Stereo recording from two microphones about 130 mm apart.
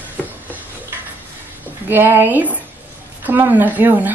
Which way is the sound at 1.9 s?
15° right (ahead or behind).